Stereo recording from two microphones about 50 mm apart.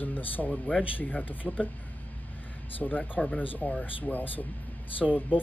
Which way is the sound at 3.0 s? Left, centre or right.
Left.